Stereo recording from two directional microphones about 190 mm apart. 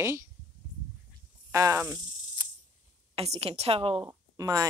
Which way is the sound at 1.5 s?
15° right (ahead or behind).